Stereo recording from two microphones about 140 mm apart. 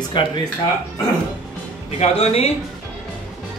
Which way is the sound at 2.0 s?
45° left (ahead or behind).